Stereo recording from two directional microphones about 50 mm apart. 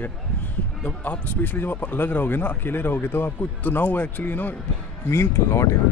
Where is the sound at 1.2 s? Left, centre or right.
Left.